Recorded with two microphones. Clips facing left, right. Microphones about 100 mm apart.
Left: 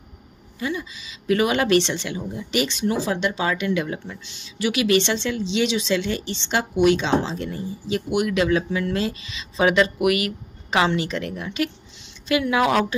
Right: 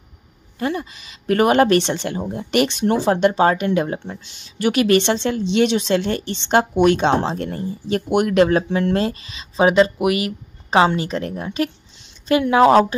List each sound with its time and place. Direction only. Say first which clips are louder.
0.6 s speech: right 4 dB; 50° right (ahead or behind); by 12.8 s 35° right (ahead or behind)